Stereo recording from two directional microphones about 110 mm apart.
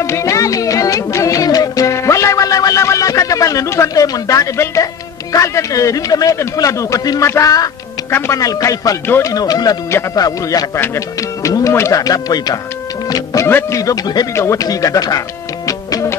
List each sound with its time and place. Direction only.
0.0 s music: 25° left (ahead or behind)
5.3 s a man's voice: 30° left (ahead or behind)
9.0 s a man's voice: 20° left (ahead or behind)
9.3 s speech: 35° left (ahead or behind)
13.1 s music: 30° left (ahead or behind)
13.5 s a man's voice: 25° left (ahead or behind)